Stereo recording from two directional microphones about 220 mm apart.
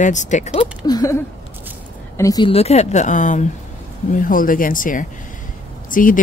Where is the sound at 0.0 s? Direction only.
35° left (ahead or behind).